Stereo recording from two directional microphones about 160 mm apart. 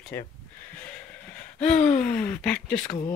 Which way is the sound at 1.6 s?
5° left (ahead or behind).